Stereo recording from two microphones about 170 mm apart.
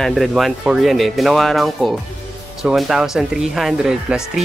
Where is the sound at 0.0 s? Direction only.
Centre (ahead or behind).